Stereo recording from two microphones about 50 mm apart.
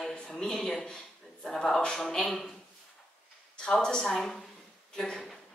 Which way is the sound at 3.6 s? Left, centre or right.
Centre.